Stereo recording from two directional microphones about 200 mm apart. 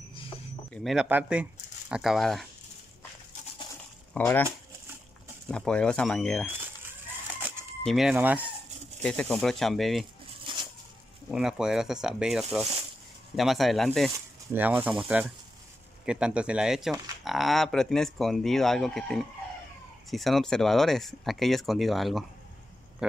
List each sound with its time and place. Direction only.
0.7 s speech: centre (ahead or behind)
4.1 s speech: 10° left (ahead or behind)
5.5 s speech: 5° left (ahead or behind)
9.0 s speech: 5° left (ahead or behind)
10.4 s a sound: 25° right (ahead or behind)
11.2 s speech: 5° right (ahead or behind)